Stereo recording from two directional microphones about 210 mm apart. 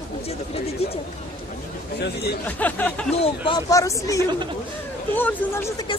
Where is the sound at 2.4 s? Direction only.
5° left (ahead or behind).